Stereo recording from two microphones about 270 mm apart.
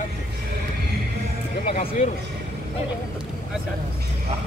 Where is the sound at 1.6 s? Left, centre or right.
Left.